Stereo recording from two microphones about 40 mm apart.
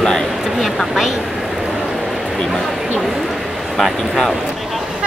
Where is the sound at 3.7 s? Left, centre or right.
Centre.